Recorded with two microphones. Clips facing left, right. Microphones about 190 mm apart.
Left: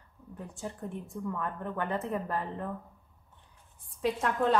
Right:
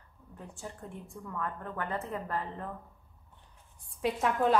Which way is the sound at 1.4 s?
20° left (ahead or behind).